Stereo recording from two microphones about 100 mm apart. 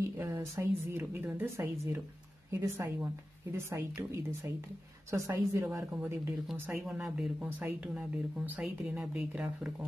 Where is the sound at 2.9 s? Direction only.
20° right (ahead or behind).